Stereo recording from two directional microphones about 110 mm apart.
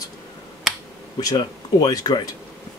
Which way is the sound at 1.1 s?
35° left (ahead or behind).